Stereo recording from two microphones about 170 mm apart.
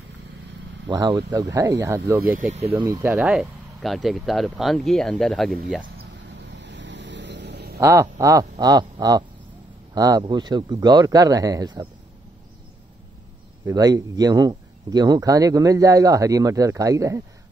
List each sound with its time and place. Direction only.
0.8 s speech: 25° right (ahead or behind); by 5.9 s centre (ahead or behind)
6.5 s vehicle: 90° right
7.8 s speech: 15° right (ahead or behind)
13.7 s speech: 20° right (ahead or behind)